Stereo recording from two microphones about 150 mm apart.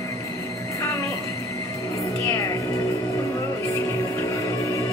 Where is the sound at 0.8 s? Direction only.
20° left (ahead or behind).